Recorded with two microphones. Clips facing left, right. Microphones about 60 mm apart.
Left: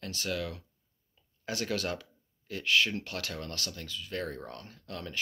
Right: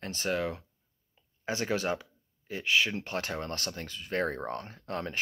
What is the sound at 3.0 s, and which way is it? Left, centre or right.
Speech, right.